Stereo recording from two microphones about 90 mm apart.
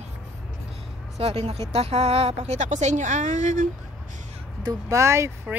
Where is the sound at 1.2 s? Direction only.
90° right.